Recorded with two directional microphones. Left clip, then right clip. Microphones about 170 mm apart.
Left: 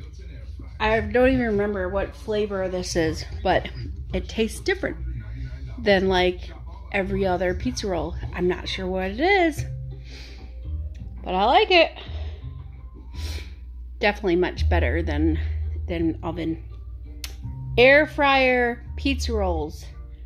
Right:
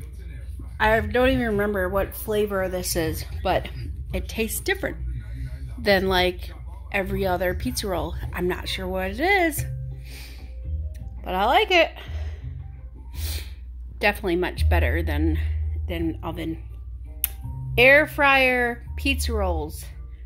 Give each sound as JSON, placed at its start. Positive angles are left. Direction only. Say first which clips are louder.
{"t": 1.1, "sound": "speech", "louder": "left 1 dB", "side_deg": 10}
{"t": 1.7, "sound": "speech", "louder": "right 2 dB", "side_deg": -40}
{"t": 2.8, "sound": "a woman's voice", "louder": "left 2 dB", "side_deg": 15}
{"t": 11.2, "sound": "a woman's voice", "louder": "left 2 dB", "side_deg": 10}
{"t": 13.1, "sound": "snort", "louder": "right 2 dB", "side_deg": 10}
{"t": 13.9, "sound": "speech", "louder": "left 1 dB", "side_deg": 10}
{"t": 17.7, "sound": "speech", "louder": "even", "side_deg": 15}